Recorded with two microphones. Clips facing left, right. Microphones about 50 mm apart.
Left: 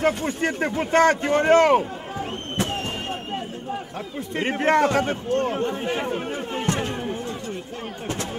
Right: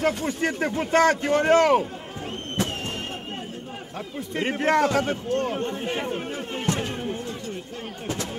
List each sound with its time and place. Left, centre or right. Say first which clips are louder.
0.0 s speech: left 2 dB; left
4.5 s speech: left 2 dB; left
5.9 s speech: left 2 dB; centre
6.6 s speech: left 1 dB; left